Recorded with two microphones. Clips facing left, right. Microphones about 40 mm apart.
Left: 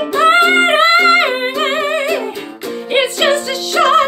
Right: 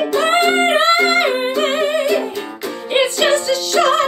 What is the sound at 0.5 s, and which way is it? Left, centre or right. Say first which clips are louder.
Music: left 3 dB; left.